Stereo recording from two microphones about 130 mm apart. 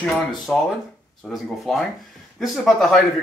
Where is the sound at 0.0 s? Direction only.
5° left (ahead or behind).